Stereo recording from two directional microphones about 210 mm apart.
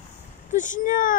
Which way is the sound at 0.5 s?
35° left (ahead or behind).